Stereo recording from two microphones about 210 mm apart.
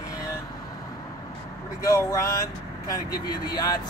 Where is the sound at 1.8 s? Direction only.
15° left (ahead or behind).